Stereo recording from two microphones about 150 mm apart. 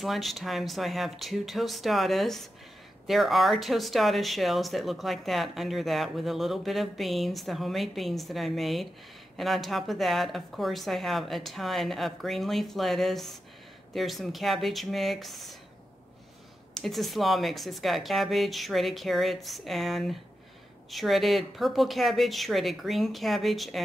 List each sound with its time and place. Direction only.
0.0 s speech: centre (ahead or behind)
16.7 s speech: centre (ahead or behind)